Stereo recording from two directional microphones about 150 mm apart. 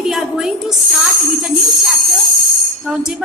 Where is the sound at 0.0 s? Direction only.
Centre (ahead or behind).